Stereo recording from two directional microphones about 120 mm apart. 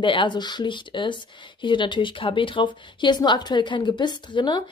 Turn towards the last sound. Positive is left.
turn(degrees=40)  # may be behind; listen again after turning